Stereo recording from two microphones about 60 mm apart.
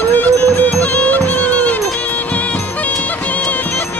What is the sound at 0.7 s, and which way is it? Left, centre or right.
Music, left.